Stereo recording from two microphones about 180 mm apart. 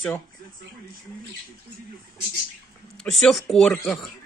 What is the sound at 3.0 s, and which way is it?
Speech, centre (ahead or behind).